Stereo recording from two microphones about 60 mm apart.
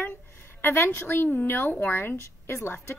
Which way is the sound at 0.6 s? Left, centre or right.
Left.